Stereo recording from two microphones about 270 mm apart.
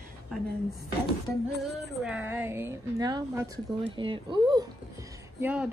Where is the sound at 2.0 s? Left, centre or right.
Centre.